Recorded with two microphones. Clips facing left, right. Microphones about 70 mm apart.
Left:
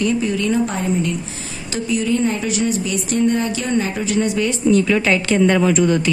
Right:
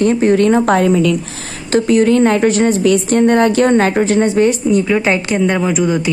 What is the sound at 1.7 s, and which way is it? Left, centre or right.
Speech, right.